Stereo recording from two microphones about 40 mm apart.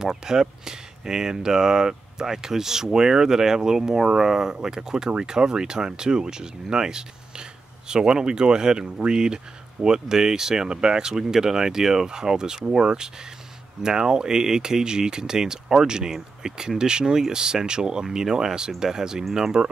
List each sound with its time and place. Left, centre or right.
0.0 s speech: centre